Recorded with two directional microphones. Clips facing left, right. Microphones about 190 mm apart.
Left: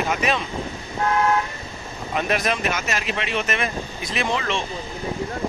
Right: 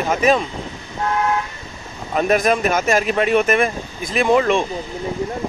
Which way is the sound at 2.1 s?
45° right (ahead or behind).